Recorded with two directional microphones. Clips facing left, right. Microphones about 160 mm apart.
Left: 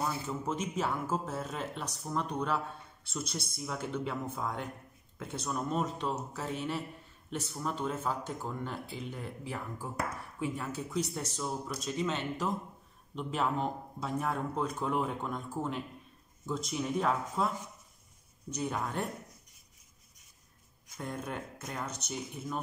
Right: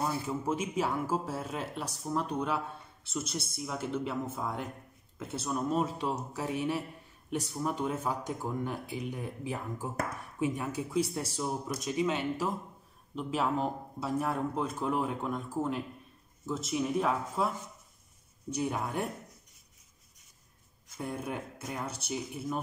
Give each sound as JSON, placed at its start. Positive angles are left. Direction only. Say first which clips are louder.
{"t": 0.3, "sound": "speech", "louder": "right 2 dB", "side_deg": -10}
{"t": 18.5, "sound": "speech", "louder": "right 2 dB", "side_deg": -10}
{"t": 21.0, "sound": "speech", "louder": "right 2 dB", "side_deg": -10}